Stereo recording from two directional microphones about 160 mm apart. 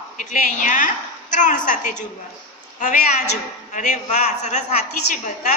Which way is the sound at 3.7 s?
50° left (ahead or behind).